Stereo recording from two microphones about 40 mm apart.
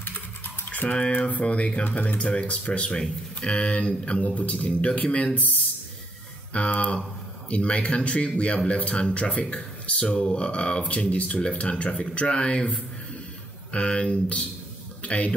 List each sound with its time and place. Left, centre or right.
0.7 s speech: left
1.1 s speech: left
2.3 s speech: left
6.5 s speech: left
13.7 s speech: left